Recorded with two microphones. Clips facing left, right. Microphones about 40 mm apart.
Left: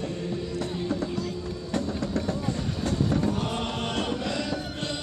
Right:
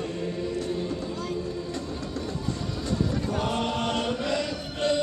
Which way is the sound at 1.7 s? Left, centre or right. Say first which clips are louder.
Left 4 dB; left.